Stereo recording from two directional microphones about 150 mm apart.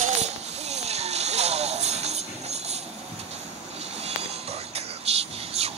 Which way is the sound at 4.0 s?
45° right (ahead or behind).